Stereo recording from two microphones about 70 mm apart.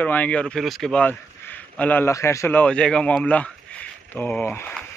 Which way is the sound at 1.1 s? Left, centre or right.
Left.